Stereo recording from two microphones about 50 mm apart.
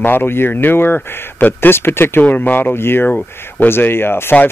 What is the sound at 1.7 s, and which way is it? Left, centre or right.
Speech, left.